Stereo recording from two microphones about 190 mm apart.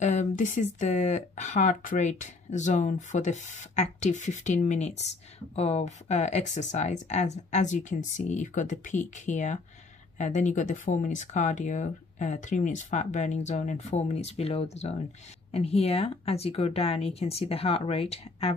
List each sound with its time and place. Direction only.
0.0 s speech: 40° left (ahead or behind)